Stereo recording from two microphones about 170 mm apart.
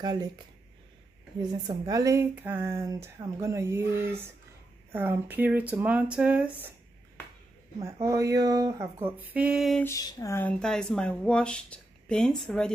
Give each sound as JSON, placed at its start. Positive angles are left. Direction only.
{"t": 0.0, "sound": "speech", "side_deg": -25}
{"t": 1.4, "sound": "speech", "side_deg": -20}
{"t": 7.8, "sound": "speech", "side_deg": -20}
{"t": 9.8, "sound": "speech", "side_deg": 20}
{"t": 10.6, "sound": "speech", "side_deg": 5}